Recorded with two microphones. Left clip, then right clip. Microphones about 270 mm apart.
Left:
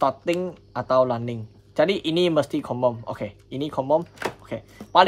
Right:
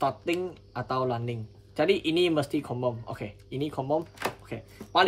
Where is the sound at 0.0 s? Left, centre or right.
Left.